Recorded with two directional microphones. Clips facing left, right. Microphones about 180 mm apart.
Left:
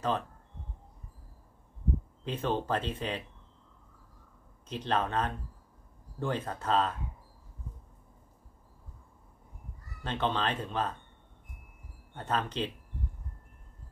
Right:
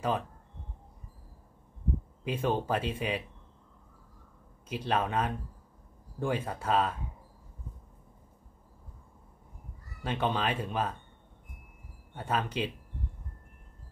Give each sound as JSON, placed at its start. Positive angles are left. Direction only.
{"t": 2.2, "sound": "speech", "side_deg": -10}
{"t": 4.6, "sound": "speech", "side_deg": -10}
{"t": 10.0, "sound": "speech", "side_deg": -10}
{"t": 12.2, "sound": "speech", "side_deg": -10}